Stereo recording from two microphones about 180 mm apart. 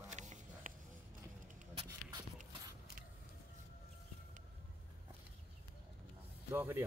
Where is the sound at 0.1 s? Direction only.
40° right (ahead or behind).